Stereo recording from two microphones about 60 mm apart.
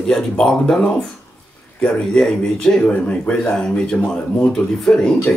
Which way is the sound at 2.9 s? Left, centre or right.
Left.